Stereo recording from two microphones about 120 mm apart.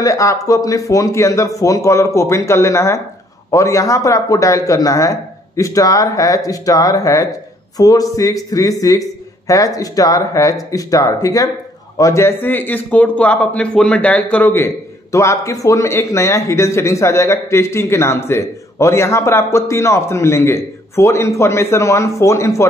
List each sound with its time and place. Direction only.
0.0 s speech: 25° left (ahead or behind)